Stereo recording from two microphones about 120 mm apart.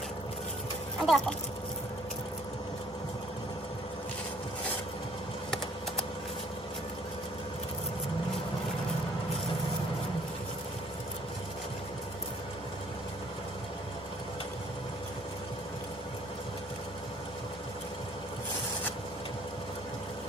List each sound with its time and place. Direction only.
1.0 s speech: 5° left (ahead or behind)